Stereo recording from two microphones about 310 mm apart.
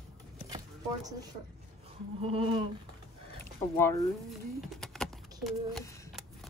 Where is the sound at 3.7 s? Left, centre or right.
Centre.